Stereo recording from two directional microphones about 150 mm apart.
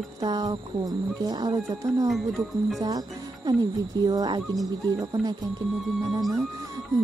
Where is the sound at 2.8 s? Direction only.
25° right (ahead or behind).